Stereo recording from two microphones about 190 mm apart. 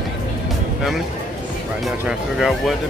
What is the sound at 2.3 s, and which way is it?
Speech, centre (ahead or behind).